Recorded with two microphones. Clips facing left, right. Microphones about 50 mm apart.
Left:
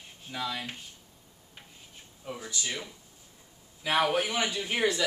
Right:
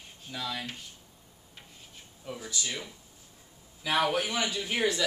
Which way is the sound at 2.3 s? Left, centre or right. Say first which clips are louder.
Left 1 dB; centre.